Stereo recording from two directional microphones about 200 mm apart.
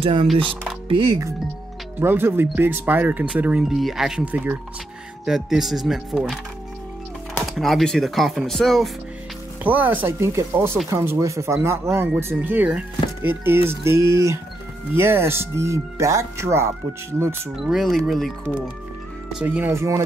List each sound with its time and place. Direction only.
0.0 s speech: 25° right (ahead or behind)
2.0 s speech: 10° right (ahead or behind)
9.6 s speech: 10° right (ahead or behind)
17.6 s speech: centre (ahead or behind)